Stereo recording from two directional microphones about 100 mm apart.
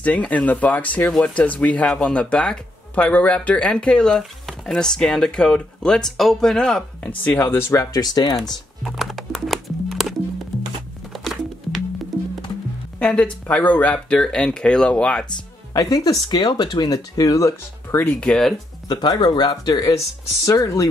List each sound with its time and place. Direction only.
0.0 s speech: 15° left (ahead or behind)
7.1 s speech: 20° left (ahead or behind)
7.8 s speech: 40° left (ahead or behind)
8.8 s music: centre (ahead or behind)
13.0 s speech: 10° left (ahead or behind)
15.7 s speech: 35° left (ahead or behind)
17.9 s speech: 15° left (ahead or behind)
18.3 s speech: 5° left (ahead or behind)
18.9 s speech: 45° left (ahead or behind)